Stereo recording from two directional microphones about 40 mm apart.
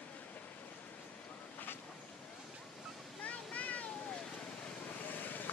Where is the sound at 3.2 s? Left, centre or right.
Left.